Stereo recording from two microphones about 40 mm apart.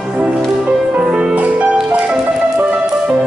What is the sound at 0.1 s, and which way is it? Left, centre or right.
Music, right.